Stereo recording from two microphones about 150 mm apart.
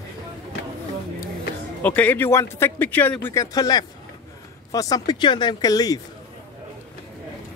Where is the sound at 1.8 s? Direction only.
10° left (ahead or behind).